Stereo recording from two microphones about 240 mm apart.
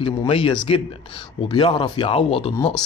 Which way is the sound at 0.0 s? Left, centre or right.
Left.